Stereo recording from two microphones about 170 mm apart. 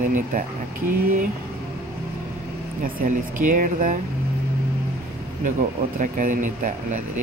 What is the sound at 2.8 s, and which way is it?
Speech, 55° right (ahead or behind).